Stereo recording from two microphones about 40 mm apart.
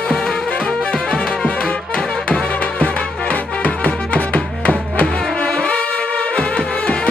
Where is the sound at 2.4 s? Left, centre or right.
Left.